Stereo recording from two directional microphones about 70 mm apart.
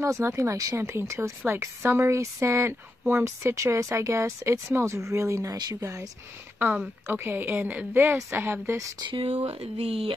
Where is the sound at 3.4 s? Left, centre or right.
Right.